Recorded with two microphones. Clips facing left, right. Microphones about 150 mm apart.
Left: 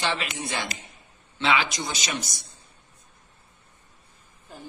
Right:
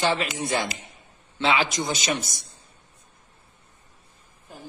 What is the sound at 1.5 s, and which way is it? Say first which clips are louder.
A man's voice: right 2 dB; 35° right (ahead or behind).